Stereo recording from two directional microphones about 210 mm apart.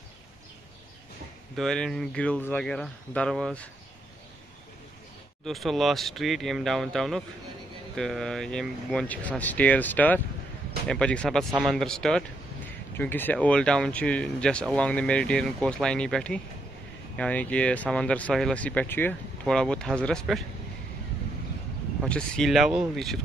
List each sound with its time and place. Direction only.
1.6 s speech: centre (ahead or behind)
5.4 s speech: centre (ahead or behind)
22.0 s speech: 5° left (ahead or behind)